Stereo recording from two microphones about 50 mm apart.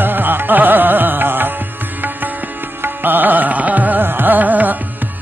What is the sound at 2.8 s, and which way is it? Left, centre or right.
Music, right.